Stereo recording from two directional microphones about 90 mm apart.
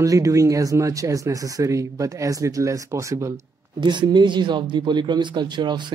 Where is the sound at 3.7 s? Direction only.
55° right (ahead or behind).